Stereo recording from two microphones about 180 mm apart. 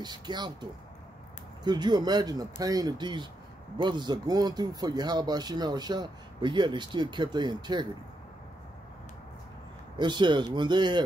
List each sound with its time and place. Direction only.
0.0 s speech: 25° right (ahead or behind)
9.9 s speech: 25° right (ahead or behind)